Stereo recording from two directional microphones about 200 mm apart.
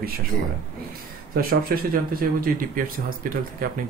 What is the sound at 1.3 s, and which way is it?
Speech, 50° right (ahead or behind).